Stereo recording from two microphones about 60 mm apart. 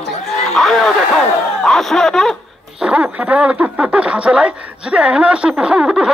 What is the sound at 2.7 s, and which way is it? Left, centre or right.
Speech, centre.